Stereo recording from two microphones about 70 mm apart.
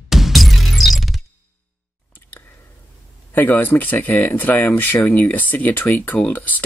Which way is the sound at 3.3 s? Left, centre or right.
Left.